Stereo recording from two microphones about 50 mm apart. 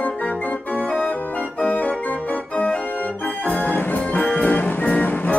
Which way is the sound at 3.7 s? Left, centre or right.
Left.